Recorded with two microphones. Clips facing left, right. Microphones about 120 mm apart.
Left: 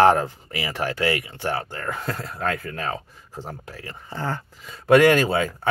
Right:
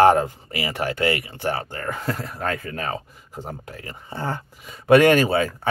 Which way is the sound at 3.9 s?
15° right (ahead or behind).